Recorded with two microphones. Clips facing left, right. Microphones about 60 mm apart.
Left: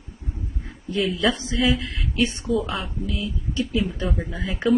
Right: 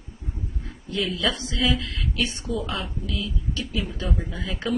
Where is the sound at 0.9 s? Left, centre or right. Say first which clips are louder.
Left 4 dB; left.